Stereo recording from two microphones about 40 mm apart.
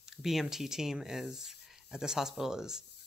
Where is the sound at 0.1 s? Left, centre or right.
Centre.